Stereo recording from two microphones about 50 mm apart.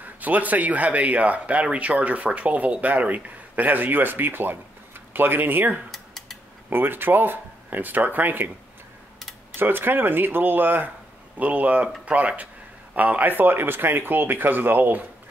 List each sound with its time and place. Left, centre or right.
0.0 s speech: right
5.9 s mechanisms: centre
6.7 s speech: right
9.6 s speech: right
11.3 s speech: right